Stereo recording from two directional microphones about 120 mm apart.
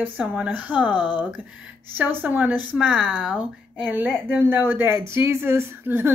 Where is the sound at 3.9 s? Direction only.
15° right (ahead or behind).